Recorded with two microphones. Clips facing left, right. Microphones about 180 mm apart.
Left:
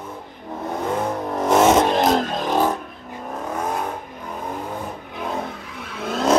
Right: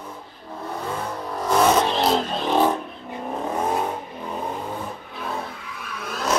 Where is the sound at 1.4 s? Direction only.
20° left (ahead or behind).